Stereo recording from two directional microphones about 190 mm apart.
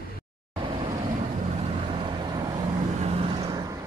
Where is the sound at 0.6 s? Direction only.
25° right (ahead or behind).